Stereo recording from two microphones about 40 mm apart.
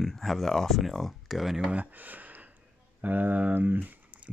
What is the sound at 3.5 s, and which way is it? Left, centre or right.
Speech, right.